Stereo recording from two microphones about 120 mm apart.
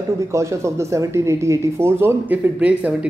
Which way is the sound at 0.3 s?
25° right (ahead or behind).